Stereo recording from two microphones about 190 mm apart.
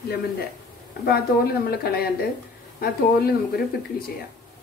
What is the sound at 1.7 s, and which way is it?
A woman's voice, 55° left (ahead or behind).